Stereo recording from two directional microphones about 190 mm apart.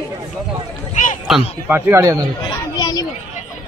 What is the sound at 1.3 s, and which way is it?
Speech, 5° right (ahead or behind).